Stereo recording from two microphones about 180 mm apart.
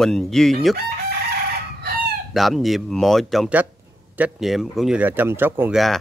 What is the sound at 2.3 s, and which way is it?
Speech, centre (ahead or behind).